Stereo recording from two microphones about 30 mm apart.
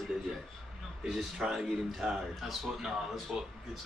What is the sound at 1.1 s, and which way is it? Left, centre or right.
Speech, centre.